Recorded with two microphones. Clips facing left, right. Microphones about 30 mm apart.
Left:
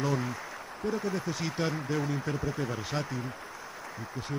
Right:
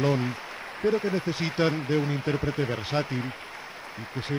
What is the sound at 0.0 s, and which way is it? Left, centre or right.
Speech, right.